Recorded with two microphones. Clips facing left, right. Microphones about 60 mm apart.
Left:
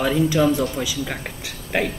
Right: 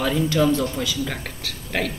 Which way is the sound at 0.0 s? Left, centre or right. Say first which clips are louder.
Left 2 dB; centre.